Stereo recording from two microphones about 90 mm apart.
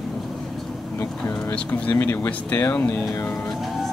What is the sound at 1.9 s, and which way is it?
Speech, 25° left (ahead or behind).